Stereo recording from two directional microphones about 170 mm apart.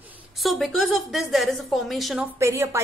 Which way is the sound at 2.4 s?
15° right (ahead or behind).